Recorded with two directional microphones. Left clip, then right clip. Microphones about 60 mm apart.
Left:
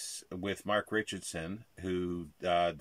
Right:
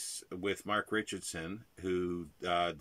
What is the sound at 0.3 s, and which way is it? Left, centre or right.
Speech, left.